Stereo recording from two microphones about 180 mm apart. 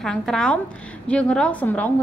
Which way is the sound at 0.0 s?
5° left (ahead or behind).